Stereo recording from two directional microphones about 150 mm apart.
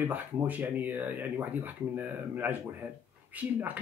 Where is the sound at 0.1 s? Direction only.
10° right (ahead or behind).